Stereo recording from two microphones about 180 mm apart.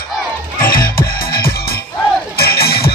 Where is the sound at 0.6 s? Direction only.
55° left (ahead or behind).